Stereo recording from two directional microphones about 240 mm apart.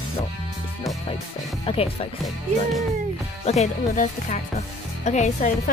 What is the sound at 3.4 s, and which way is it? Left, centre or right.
Speech, left.